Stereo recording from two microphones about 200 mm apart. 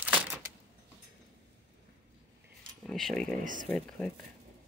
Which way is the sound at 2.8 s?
Centre (ahead or behind).